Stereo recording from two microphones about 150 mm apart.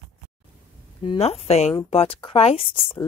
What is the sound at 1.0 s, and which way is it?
Speech, 40° left (ahead or behind).